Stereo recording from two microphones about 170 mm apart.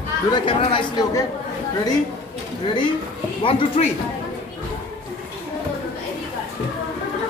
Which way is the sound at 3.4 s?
35° left (ahead or behind).